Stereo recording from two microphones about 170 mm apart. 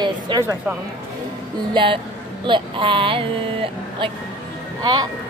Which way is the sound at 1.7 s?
30° right (ahead or behind).